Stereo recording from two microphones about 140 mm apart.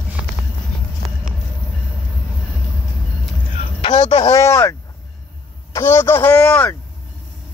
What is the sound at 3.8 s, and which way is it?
Speech, 35° left (ahead or behind).